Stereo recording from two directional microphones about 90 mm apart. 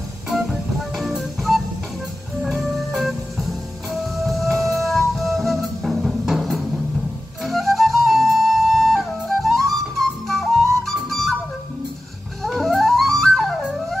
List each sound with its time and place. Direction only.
0.3 s music: 5° right (ahead or behind)
7.4 s flute: centre (ahead or behind)
12.4 s music: centre (ahead or behind)